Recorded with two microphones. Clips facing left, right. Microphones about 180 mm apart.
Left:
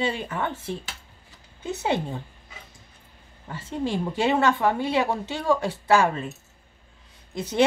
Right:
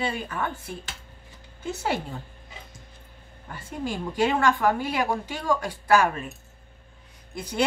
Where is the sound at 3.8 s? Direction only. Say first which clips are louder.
Left 1 dB; 25° left (ahead or behind).